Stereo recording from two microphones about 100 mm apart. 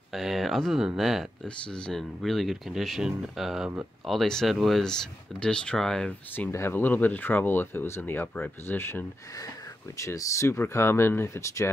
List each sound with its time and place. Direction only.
0.1 s speech: centre (ahead or behind)
6.5 s speech: 25° left (ahead or behind)